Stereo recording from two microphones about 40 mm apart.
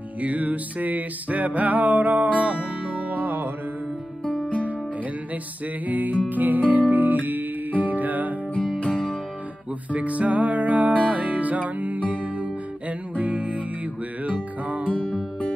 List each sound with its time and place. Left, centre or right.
0.2 s music: right
5.9 s music: right
8.7 s music: left
9.9 s music: right